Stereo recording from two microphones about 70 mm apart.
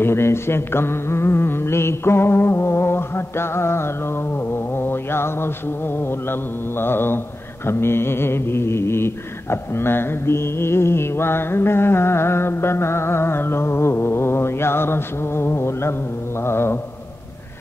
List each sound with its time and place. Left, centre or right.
0.0 s mantra: left